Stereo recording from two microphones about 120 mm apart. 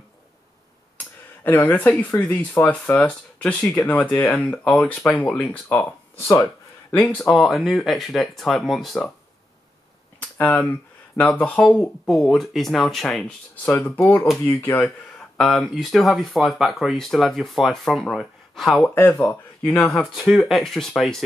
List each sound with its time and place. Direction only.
1.4 s speech: 15° left (ahead or behind)
7.2 s speech: centre (ahead or behind)
10.3 s speech: 10° left (ahead or behind)
11.6 s speech: centre (ahead or behind)
15.3 s speech: centre (ahead or behind)
18.9 s speech: 20° left (ahead or behind)
19.8 s speech: 5° left (ahead or behind)